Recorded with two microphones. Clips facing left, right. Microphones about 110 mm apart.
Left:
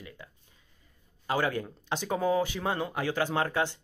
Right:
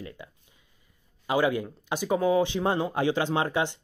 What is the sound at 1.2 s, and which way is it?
A man's voice, 15° right (ahead or behind).